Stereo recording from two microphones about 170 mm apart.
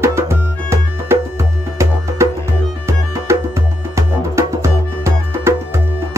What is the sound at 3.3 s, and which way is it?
Music, 15° right (ahead or behind).